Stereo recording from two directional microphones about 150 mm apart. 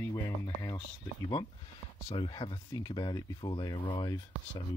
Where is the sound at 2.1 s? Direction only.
30° left (ahead or behind).